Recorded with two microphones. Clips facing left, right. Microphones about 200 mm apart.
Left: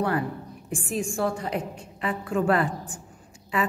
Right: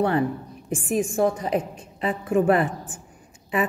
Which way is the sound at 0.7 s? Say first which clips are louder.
Right 5 dB; 20° right (ahead or behind).